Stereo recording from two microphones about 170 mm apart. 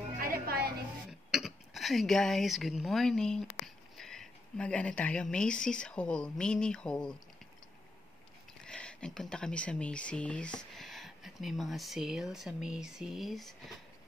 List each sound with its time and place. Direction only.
0.2 s music: 60° right (ahead or behind)
1.3 s speech: centre (ahead or behind)
8.5 s speech: 5° left (ahead or behind)